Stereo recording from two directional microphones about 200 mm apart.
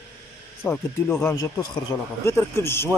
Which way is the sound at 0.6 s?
10° left (ahead or behind).